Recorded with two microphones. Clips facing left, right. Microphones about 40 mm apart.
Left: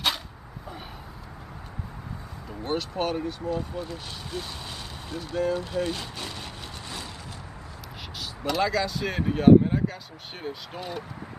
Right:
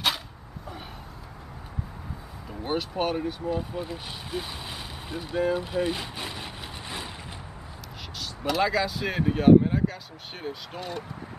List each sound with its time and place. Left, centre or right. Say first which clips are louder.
2.6 s speech: even; centre
8.2 s speech: right 1 dB; centre